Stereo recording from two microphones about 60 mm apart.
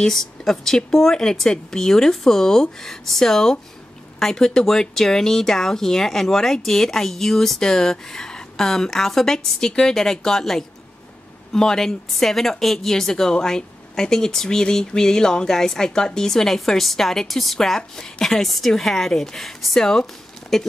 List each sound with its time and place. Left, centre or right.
0.0 s a woman's voice: centre